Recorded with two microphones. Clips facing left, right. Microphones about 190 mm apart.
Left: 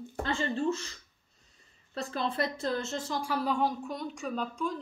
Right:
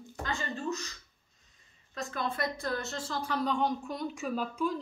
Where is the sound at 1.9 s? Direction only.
30° left (ahead or behind).